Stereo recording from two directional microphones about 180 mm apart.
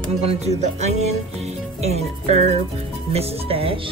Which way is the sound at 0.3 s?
35° right (ahead or behind).